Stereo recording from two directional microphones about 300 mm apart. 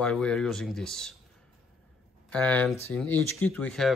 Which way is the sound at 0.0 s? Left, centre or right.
Centre.